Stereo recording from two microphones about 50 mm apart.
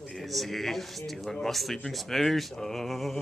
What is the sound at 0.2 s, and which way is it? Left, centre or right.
Speech, centre.